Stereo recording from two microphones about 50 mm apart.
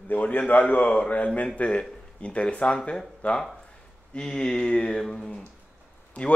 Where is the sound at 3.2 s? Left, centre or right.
Left.